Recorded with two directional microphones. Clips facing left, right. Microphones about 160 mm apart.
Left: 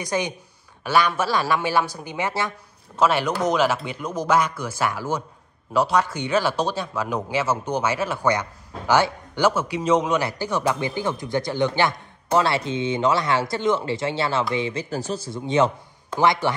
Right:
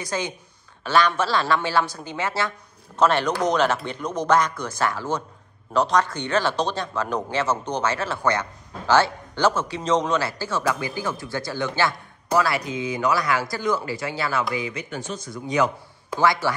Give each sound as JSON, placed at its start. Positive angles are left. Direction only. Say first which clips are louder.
{"t": 0.0, "sound": "speech", "louder": "left 3 dB", "side_deg": 15}